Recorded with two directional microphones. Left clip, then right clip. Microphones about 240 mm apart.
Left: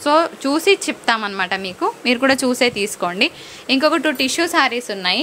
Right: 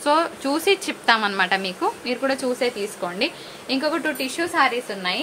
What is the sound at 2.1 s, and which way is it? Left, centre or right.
A woman's voice, left.